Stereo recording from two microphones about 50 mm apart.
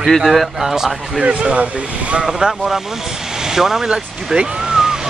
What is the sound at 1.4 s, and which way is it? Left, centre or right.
Speech, right.